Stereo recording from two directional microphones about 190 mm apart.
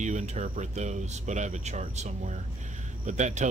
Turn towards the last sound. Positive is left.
turn(degrees=-40)  # may be behind; listen again after turning